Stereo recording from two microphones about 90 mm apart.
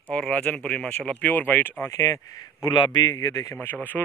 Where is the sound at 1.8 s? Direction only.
35° left (ahead or behind).